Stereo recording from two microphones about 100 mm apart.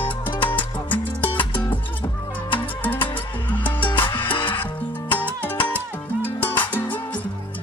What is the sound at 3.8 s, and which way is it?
Music, 55° left (ahead or behind).